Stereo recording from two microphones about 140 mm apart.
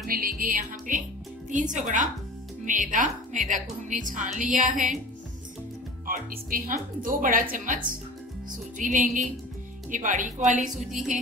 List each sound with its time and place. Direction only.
0.0 s music: 90° right; by 1.0 s 70° right (ahead or behind)
1.5 s speech: 65° right (ahead or behind)
6.0 s speech: 80° right; by 10.9 s 60° right (ahead or behind)